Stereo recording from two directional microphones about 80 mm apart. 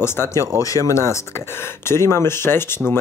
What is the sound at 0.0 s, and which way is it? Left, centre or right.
Speech, left.